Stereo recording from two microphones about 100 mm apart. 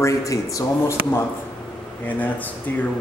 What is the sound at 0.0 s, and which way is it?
Speech, 30° left (ahead or behind).